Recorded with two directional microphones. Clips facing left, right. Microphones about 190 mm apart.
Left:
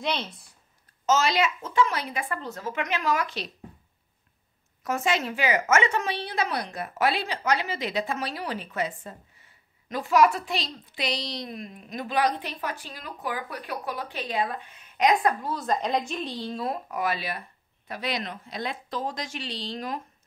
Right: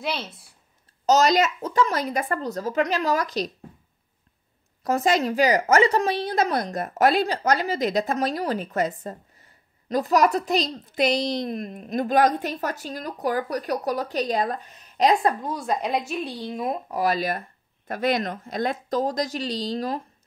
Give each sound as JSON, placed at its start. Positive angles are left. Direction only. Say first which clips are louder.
{"t": 0.0, "sound": "speech", "louder": "even", "side_deg": -5}
{"t": 1.0, "sound": "a child's voice", "louder": "right 5 dB", "side_deg": -40}
{"t": 4.8, "sound": "a child's voice", "louder": "right 5 dB", "side_deg": -40}
{"t": 15.4, "sound": "speech", "louder": "right 1 dB", "side_deg": -10}
{"t": 16.9, "sound": "speech", "louder": "right 5 dB", "side_deg": -40}